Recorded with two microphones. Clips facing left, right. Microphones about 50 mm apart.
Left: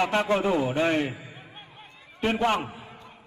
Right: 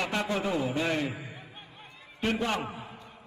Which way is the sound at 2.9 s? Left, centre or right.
Left.